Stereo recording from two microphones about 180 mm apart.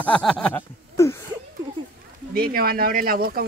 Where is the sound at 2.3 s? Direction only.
55° right (ahead or behind).